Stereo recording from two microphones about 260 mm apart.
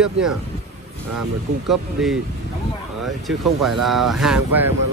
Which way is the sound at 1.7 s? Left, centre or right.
Centre.